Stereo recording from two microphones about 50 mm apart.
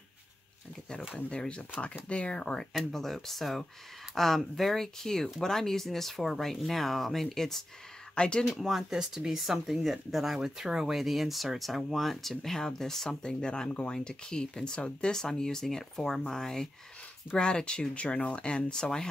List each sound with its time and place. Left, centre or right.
2.0 s speech: left
2.8 s speech: centre
8.1 s speech: centre
8.5 s speech: centre; by 15.1 s left
15.1 s speech: centre